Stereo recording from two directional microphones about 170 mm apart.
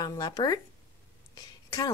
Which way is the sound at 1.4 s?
25° left (ahead or behind).